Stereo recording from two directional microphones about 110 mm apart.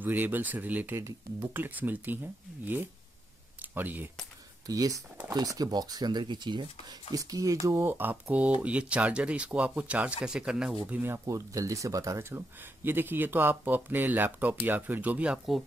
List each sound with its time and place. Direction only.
0.0 s speech: 15° right (ahead or behind)
4.6 s speech: 30° right (ahead or behind)
7.2 s speech: 30° right (ahead or behind); by 10.8 s 5° right (ahead or behind)
10.9 s speech: 20° right (ahead or behind)
11.2 s speech: 30° right (ahead or behind); by 15.6 s 5° right (ahead or behind)